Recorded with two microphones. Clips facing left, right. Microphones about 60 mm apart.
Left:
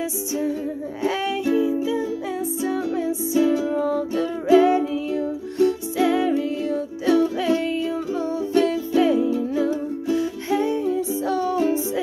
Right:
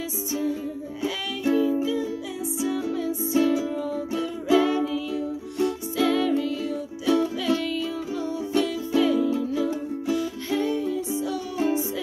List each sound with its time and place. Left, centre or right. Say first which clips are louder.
1.0 s music: left 4 dB; left
2.6 s music: left 2 dB; left
3.1 s music: left 2 dB; left
3.7 s music: left 6 dB; left
4.6 s music: left 5 dB; left
6.0 s music: left 2 dB; left
11.3 s music: left 7 dB; left